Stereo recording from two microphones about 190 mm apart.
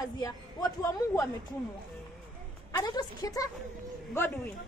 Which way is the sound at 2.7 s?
20° left (ahead or behind).